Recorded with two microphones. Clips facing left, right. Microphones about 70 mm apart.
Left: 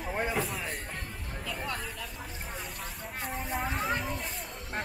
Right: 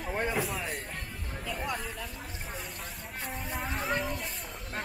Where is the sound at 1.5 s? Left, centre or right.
Centre.